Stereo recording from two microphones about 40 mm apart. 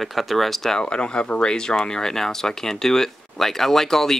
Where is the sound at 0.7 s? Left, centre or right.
Left.